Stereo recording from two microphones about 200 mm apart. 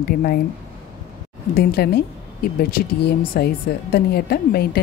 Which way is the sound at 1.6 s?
50° left (ahead or behind).